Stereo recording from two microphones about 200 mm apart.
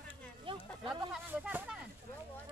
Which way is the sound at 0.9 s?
5° right (ahead or behind).